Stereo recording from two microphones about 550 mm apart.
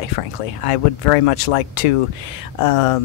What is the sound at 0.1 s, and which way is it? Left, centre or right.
Speech, left.